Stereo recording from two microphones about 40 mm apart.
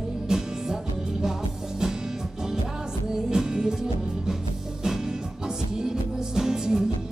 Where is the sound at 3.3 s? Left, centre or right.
Centre.